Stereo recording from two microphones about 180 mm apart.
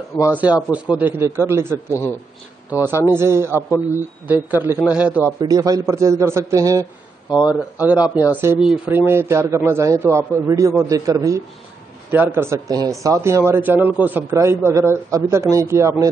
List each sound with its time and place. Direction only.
0.2 s speech: 10° right (ahead or behind)
3.5 s speech: 15° left (ahead or behind)
4.3 s speech: 10° right (ahead or behind)
5.4 s speech: 20° right (ahead or behind)